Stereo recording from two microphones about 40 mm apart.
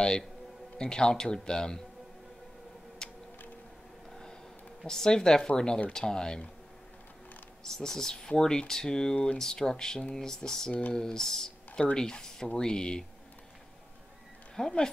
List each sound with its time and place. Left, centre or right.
0.7 s speech: centre
3.0 s a sound: centre
4.8 s speech: centre
7.6 s speech: centre
9.1 s speech: left
9.4 s speech: centre
10.7 s speech: left
11.0 s speech: centre
14.5 s speech: centre